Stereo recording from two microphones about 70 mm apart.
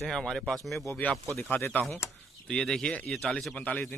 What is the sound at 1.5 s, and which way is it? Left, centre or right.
Speech, left.